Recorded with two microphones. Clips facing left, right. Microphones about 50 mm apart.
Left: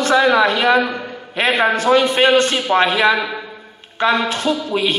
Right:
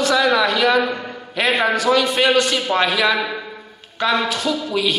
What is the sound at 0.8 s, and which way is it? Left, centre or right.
Speech, centre.